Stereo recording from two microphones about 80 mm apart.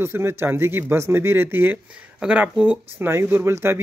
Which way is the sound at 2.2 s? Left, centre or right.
Centre.